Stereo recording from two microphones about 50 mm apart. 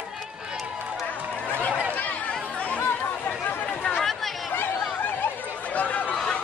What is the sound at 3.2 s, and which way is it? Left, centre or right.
Chatter, left.